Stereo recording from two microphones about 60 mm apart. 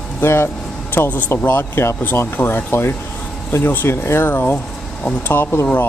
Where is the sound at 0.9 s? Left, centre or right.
Left.